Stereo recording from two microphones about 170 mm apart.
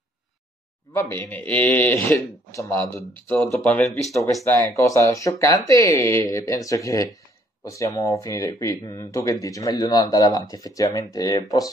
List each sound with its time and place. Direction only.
0.9 s speech: 15° left (ahead or behind)
4.5 s speech: 20° left (ahead or behind)